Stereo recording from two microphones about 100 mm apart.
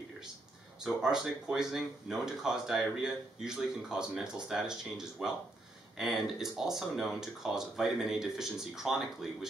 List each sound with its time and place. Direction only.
0.8 s speech: 5° right (ahead or behind)